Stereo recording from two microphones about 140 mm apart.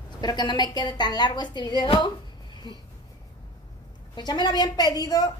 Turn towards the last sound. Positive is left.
turn(degrees=25)  # may be behind; listen again after turning